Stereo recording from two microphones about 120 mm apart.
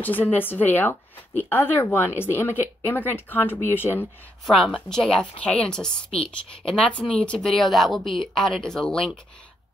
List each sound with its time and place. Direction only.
0.0 s speech: 15° left (ahead or behind)
4.5 s a woman's voice: 5° left (ahead or behind)